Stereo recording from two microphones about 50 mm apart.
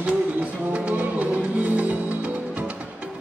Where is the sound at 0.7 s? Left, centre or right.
Right.